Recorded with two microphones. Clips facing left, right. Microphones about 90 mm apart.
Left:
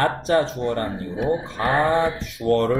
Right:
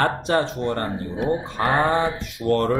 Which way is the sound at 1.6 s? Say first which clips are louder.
Left 1 dB; 45° right (ahead or behind).